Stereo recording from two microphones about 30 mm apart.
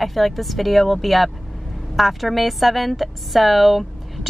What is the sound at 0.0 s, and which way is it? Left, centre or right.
A woman's voice, centre.